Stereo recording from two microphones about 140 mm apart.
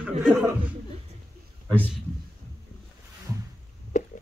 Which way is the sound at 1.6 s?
10° left (ahead or behind).